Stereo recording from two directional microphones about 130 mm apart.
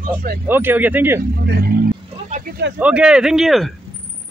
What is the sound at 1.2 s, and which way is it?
Speech, 90° right.